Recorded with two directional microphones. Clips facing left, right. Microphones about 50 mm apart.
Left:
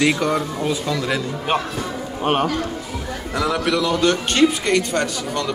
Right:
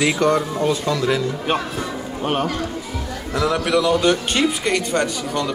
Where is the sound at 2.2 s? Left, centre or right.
Left.